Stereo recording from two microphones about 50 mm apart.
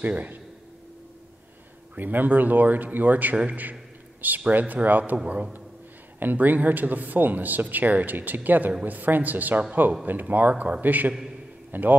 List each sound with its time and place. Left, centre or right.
0.0 s speech: right
2.0 s a man's voice: right
10.5 s a man's voice: right
10.8 s speech: right